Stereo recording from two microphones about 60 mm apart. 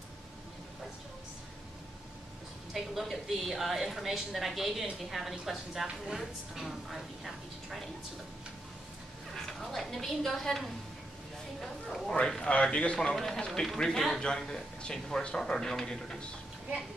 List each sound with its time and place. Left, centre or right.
2.7 s a woman's voice: centre
9.3 s a woman's voice: centre
13.1 s a woman's voice: centre